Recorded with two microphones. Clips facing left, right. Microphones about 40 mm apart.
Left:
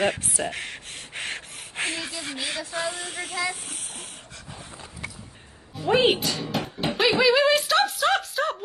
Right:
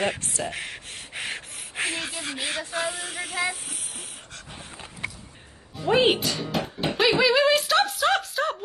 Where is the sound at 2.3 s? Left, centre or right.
Right.